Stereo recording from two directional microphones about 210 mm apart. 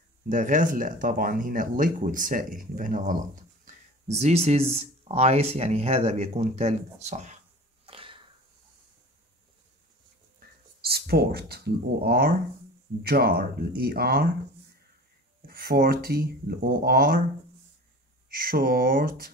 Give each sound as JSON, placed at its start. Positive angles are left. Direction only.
{"t": 0.3, "sound": "speech", "side_deg": -40}
{"t": 7.8, "sound": "a sound", "side_deg": -25}
{"t": 10.8, "sound": "speech", "side_deg": -50}
{"t": 15.4, "sound": "speech", "side_deg": -45}
{"t": 18.3, "sound": "speech", "side_deg": -45}